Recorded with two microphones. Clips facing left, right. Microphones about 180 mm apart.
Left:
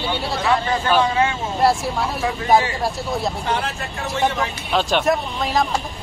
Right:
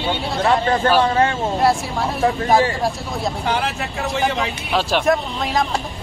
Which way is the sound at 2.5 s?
Centre (ahead or behind).